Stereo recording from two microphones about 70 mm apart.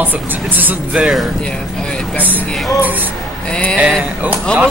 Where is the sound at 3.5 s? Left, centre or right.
Centre.